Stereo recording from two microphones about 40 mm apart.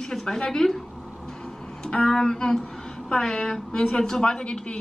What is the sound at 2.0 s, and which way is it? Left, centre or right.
A woman's voice, centre.